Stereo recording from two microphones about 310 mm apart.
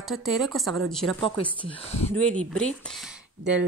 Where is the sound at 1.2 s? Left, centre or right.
Centre.